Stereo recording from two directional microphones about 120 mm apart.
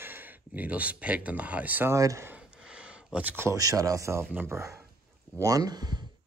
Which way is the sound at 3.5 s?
30° right (ahead or behind).